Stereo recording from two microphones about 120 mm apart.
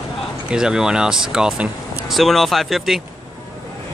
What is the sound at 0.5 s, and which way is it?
Speech, 5° right (ahead or behind).